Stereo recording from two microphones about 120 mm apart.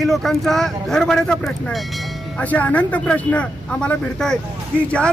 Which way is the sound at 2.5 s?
15° left (ahead or behind).